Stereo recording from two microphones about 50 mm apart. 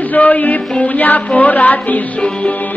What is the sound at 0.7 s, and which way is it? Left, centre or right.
Music, left.